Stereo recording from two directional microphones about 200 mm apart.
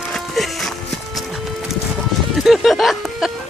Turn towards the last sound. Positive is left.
turn(degrees=0)  # may be behind; listen again after turning